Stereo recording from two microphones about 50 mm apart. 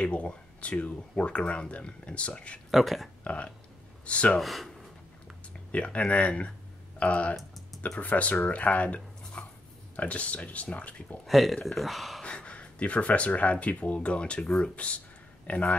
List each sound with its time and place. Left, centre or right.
0.0 s speech: left
2.7 s speech: centre
3.3 s speech: left
4.4 s speech: centre
5.7 s speech: left
11.2 s speech: centre
12.2 s speech: left